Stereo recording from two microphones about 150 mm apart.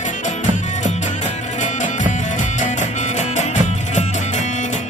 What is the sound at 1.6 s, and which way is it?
Music, 55° left (ahead or behind).